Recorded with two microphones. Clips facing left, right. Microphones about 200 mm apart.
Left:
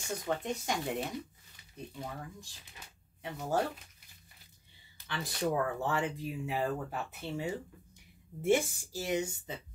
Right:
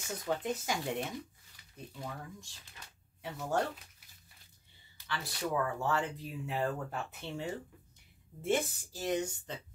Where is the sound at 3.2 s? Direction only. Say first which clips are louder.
Left 1 dB; centre (ahead or behind).